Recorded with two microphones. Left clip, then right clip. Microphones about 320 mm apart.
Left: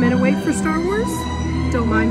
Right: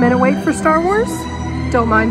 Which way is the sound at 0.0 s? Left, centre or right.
Centre.